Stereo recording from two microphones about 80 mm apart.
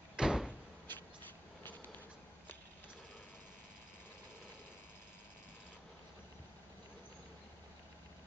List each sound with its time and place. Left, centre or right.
0.1 s door: centre
0.5 s door: left
1.6 s a sound: left